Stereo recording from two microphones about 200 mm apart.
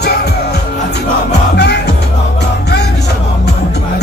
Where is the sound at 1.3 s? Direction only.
55° left (ahead or behind).